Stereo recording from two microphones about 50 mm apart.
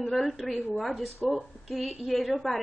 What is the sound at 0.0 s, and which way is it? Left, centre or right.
A woman's voice, centre.